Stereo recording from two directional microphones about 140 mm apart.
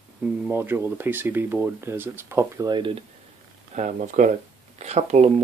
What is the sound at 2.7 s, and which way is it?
Speech, 35° right (ahead or behind).